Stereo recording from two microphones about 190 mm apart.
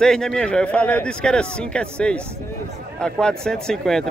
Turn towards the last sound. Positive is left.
turn(degrees=5)  # may be behind; listen again after turning